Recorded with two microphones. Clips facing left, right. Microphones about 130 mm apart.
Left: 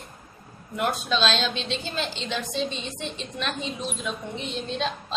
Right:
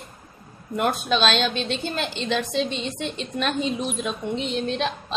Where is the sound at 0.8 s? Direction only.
60° right (ahead or behind).